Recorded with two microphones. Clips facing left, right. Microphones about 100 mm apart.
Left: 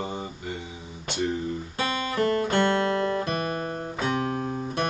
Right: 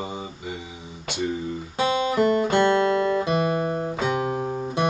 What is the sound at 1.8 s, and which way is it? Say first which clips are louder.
Guitar: right 6 dB; 20° right (ahead or behind).